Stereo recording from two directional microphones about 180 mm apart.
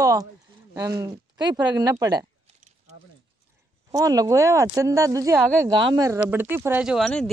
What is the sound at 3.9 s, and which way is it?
Speech, 20° right (ahead or behind).